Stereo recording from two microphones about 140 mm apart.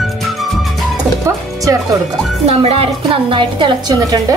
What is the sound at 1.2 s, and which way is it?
Music, 25° right (ahead or behind).